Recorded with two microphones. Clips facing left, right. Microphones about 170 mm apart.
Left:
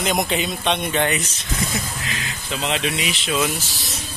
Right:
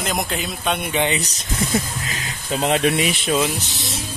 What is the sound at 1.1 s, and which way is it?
Speech, 40° right (ahead or behind).